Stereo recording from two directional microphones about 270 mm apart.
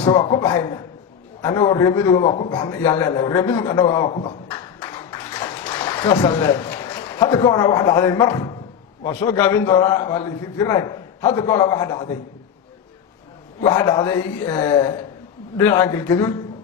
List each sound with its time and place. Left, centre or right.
0.0 s a man's voice: centre
5.6 s a sound: centre
7.2 s a man's voice: centre
13.6 s a man's voice: centre